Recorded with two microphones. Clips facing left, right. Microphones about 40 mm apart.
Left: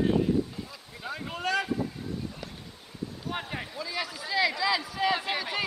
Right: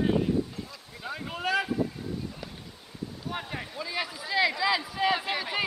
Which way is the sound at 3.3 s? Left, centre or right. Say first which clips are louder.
Left 1 dB; centre.